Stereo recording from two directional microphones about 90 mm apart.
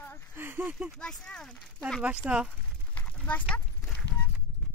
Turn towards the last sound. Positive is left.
turn(degrees=10)  # may be behind; listen again after turning